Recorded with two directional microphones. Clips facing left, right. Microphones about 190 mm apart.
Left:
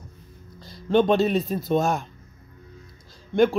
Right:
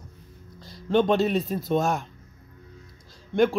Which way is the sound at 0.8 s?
30° left (ahead or behind).